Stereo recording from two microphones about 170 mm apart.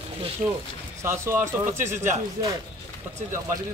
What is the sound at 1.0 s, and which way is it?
Speech, 15° right (ahead or behind).